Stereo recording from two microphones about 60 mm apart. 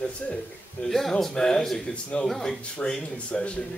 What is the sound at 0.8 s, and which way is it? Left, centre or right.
A man's voice, centre.